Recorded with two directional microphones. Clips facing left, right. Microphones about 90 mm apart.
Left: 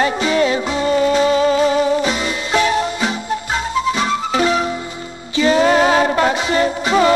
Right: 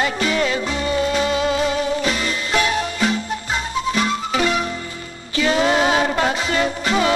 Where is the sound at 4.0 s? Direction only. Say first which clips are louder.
Left 3 dB; 30° left (ahead or behind).